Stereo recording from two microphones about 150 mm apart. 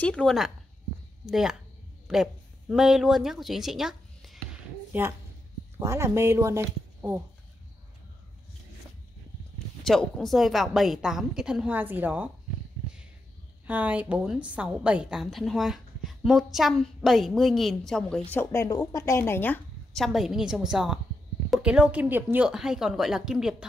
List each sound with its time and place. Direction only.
0.0 s a woman's voice: 5° left (ahead or behind)
5.8 s speech: 20° right (ahead or behind)
9.8 s a woman's voice: centre (ahead or behind)
13.7 s a woman's voice: 10° right (ahead or behind)
18.3 s a woman's voice: 15° left (ahead or behind)
19.9 s a woman's voice: centre (ahead or behind)